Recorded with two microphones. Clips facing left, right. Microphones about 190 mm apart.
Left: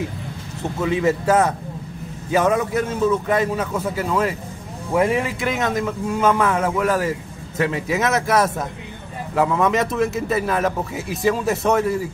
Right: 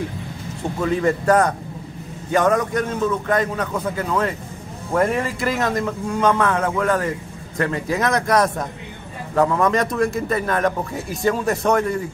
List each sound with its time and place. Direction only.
0.7 s a man's voice: 5° left (ahead or behind)